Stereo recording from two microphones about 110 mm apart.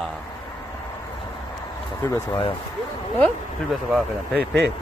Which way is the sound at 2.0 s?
25° left (ahead or behind).